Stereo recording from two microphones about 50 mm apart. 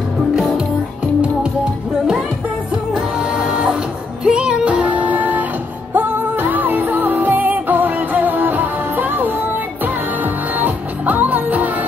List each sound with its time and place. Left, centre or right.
1.2 s music: centre
3.3 s music: right